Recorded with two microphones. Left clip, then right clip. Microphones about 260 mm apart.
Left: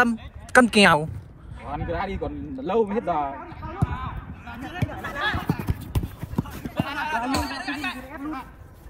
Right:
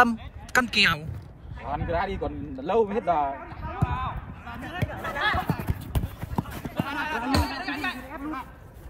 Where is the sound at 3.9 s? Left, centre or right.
Right.